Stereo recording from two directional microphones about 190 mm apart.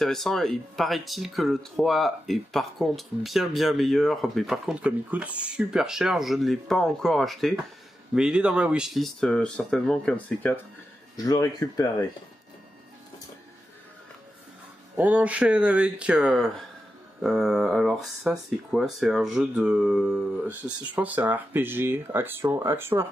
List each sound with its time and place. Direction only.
0.0 s speech: centre (ahead or behind)
11.1 s speech: 20° left (ahead or behind)
15.0 s speech: 10° right (ahead or behind)